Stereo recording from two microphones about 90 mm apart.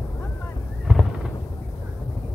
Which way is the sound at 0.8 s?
10° right (ahead or behind).